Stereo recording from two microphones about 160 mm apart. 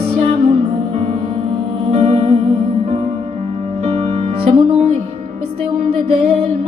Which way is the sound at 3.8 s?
40° right (ahead or behind).